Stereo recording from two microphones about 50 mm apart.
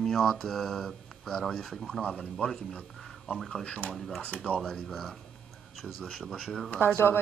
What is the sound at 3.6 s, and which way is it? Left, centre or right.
Speech, left.